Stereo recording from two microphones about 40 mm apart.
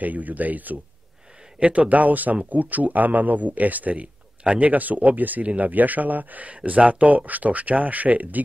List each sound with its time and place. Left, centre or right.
0.0 s speech: right